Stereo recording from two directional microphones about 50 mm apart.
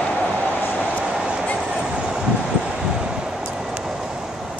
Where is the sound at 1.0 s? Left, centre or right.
Centre.